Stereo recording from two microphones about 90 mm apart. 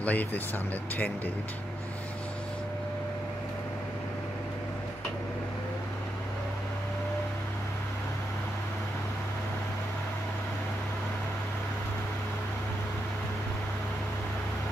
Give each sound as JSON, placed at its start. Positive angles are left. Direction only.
{"t": 0.0, "sound": "speech", "side_deg": 20}